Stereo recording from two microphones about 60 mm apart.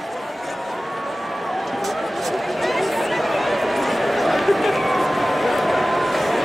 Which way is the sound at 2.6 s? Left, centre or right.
Centre.